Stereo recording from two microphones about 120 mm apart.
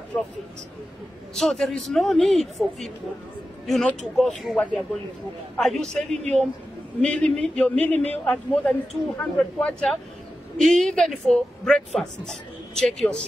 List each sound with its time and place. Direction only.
0.1 s a man's voice: 15° left (ahead or behind)
1.3 s a woman's voice: 5° left (ahead or behind)
7.0 s a man's voice: 10° left (ahead or behind)